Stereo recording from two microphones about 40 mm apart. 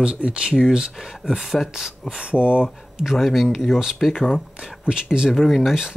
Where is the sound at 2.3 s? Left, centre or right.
Right.